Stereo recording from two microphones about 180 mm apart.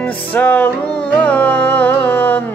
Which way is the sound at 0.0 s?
10° left (ahead or behind).